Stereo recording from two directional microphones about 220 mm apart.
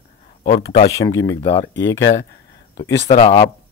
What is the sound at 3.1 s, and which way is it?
Speech, 25° left (ahead or behind).